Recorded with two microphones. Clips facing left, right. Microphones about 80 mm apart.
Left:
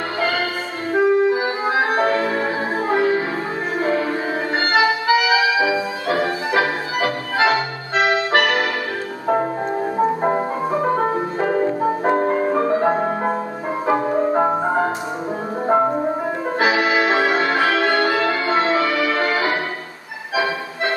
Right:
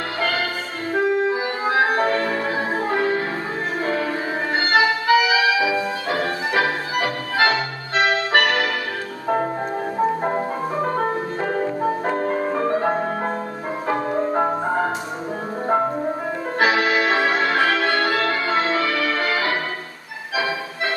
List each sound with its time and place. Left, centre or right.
0.2 s music: centre
12.1 s music: centre
12.4 s music: centre